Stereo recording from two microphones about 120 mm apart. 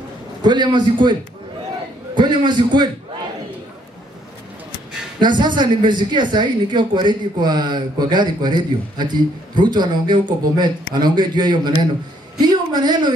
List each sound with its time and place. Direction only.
0.4 s speech: 35° right (ahead or behind)
2.1 s speech: 40° right (ahead or behind)
5.2 s a woman's voice: 40° right (ahead or behind)